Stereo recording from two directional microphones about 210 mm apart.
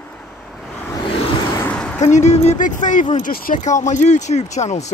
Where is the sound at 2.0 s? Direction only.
35° left (ahead or behind).